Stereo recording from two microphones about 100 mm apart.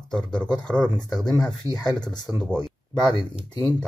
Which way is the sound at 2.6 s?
50° left (ahead or behind).